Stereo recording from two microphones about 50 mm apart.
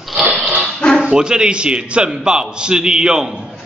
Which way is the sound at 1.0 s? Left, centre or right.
Centre.